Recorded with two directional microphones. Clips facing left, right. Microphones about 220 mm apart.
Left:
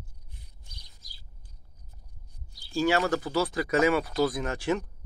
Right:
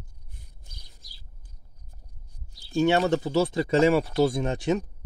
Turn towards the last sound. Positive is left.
turn(degrees=-20)  # may be behind; listen again after turning